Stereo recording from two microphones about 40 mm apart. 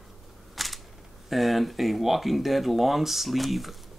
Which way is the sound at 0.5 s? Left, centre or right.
Centre.